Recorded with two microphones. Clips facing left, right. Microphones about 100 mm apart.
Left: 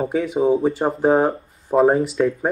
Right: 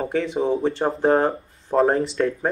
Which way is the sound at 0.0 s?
10° left (ahead or behind).